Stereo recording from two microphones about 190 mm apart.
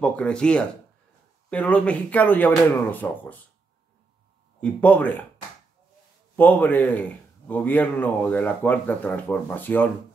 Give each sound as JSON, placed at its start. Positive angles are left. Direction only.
{"t": 0.0, "sound": "a man's voice", "side_deg": 5}
{"t": 4.6, "sound": "a man's voice", "side_deg": 10}
{"t": 6.3, "sound": "a man's voice", "side_deg": 10}